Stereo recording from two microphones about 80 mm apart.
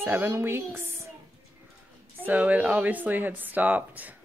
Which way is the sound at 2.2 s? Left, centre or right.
Centre.